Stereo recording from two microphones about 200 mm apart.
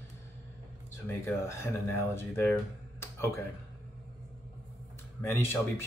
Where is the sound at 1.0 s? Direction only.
10° left (ahead or behind).